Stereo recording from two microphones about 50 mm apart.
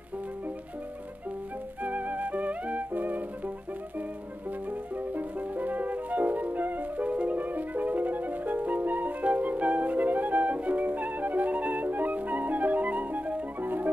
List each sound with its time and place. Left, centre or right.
1.8 s music: right
4.9 s music: right